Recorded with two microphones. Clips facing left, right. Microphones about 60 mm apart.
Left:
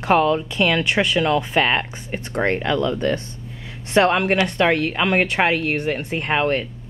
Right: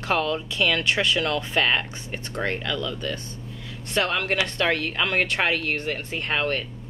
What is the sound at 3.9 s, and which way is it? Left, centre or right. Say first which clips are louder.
Speech: left 8 dB; left.